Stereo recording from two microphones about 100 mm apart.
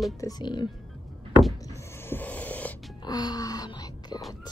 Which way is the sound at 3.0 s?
40° left (ahead or behind).